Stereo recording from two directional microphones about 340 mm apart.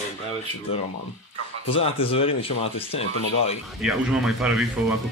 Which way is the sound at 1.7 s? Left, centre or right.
Centre.